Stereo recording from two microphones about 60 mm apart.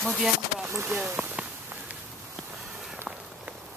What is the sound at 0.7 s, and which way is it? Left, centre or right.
Speech, right.